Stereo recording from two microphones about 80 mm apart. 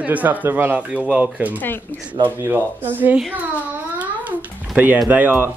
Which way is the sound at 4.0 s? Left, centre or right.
Centre.